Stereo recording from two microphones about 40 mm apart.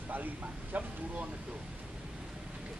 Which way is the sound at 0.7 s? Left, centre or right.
Right.